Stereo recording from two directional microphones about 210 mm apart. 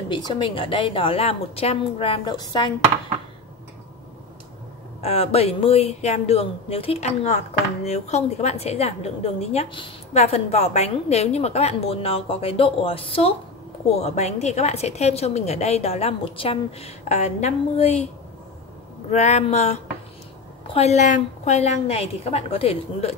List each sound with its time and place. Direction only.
0.1 s a woman's voice: 25° left (ahead or behind)
5.0 s a woman's voice: 30° left (ahead or behind)
19.0 s a woman's voice: 30° left (ahead or behind)